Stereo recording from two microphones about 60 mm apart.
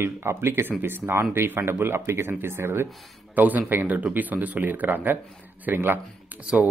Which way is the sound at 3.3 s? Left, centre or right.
Right.